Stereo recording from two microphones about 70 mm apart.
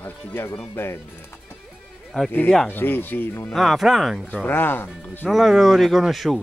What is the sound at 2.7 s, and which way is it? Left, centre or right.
Speech, left.